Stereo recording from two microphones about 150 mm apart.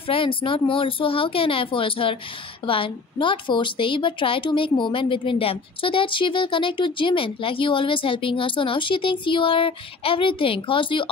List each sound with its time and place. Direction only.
0.0 s a woman's voice: 35° left (ahead or behind)